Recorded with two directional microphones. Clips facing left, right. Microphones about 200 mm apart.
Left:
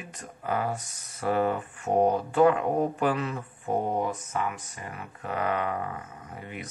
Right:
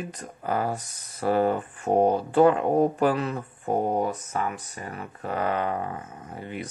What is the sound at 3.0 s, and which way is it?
Speech, 35° right (ahead or behind).